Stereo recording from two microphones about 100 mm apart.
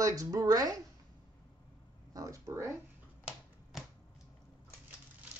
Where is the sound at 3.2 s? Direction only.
5° right (ahead or behind).